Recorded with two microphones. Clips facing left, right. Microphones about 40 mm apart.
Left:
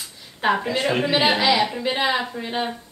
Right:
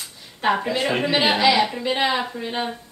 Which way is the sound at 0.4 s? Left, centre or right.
Centre.